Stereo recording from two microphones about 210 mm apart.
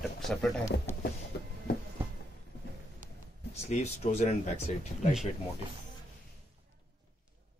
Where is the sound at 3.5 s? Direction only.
30° left (ahead or behind).